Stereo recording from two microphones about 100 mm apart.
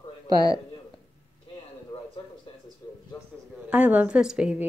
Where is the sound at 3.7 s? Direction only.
15° right (ahead or behind).